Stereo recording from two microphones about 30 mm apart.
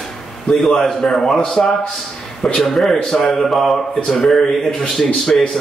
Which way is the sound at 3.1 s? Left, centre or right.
Centre.